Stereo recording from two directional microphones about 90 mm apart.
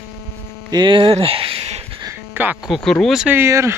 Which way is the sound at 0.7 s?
60° right (ahead or behind).